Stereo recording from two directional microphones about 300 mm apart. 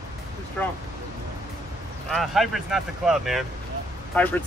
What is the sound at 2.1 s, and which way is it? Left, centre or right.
Speech, centre.